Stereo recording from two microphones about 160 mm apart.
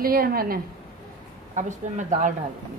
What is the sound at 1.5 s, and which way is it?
Speech, 50° right (ahead or behind).